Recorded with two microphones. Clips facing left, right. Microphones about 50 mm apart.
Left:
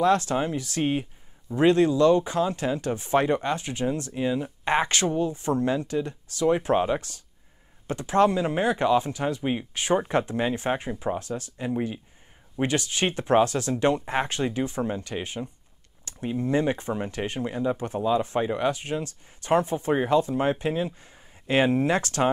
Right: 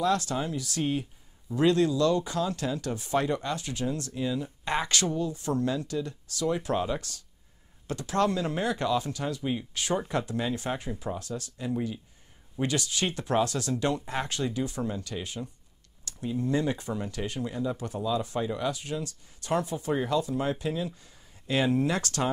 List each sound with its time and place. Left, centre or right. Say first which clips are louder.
0.0 s speech: left 5 dB; left